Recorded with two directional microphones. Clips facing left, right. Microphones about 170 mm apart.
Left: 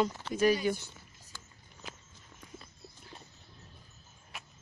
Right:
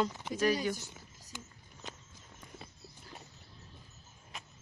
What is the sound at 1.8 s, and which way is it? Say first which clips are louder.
Walk: even; centre (ahead or behind).